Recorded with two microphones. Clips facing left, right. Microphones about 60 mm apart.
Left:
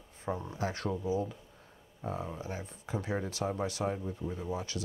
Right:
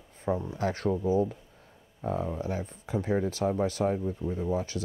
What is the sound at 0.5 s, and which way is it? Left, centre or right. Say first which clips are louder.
Speech: right 6 dB; right.